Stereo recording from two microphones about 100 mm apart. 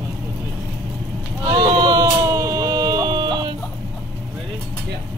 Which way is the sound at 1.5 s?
50° right (ahead or behind).